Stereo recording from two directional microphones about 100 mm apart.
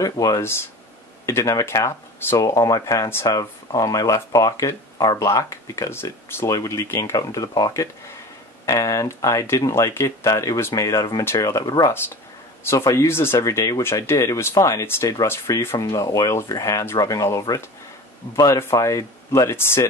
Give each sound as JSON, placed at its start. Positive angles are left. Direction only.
{"t": 0.0, "sound": "speech", "side_deg": 35}
{"t": 12.6, "sound": "speech", "side_deg": 30}